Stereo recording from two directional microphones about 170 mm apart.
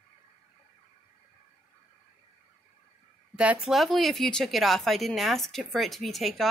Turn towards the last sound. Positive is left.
turn(degrees=0)  # may be behind; listen again after turning